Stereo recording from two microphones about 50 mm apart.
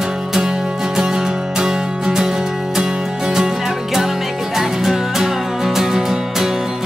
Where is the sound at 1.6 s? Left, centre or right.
Centre.